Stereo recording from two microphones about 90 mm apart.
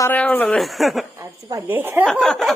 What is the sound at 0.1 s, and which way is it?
Speech, 20° left (ahead or behind).